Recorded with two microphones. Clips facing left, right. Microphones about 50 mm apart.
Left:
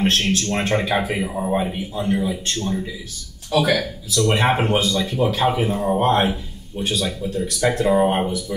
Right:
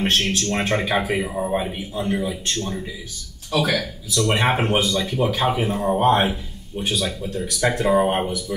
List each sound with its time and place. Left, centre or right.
0.0 s speech: centre
4.7 s speech: centre
5.0 s speech: centre